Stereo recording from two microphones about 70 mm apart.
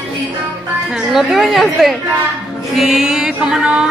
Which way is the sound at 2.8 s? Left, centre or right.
Centre.